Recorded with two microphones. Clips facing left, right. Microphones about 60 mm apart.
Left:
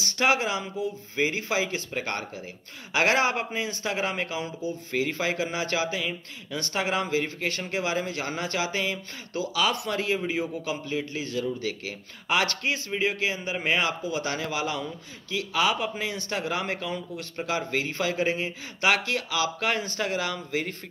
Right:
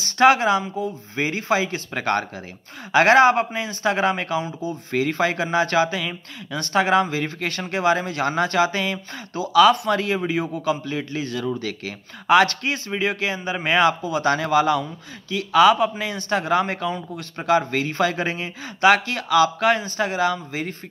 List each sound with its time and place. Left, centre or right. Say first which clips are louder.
0.0 s a man's voice: right 8 dB; right
2.0 s a man's voice: right 11 dB; right
2.9 s a man's voice: right 9 dB; right
19.8 s speech: right 7 dB; right